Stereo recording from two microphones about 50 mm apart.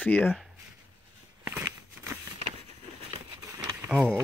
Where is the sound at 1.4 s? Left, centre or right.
Right.